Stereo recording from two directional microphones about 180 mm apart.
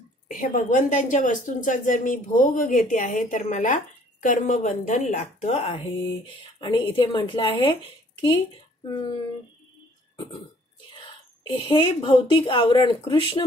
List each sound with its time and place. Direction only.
0.3 s a woman's voice: 45° left (ahead or behind); by 7.7 s 30° left (ahead or behind)
11.0 s a woman's voice: 30° left (ahead or behind)